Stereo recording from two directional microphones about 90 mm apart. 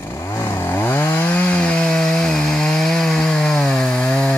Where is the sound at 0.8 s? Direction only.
25° left (ahead or behind).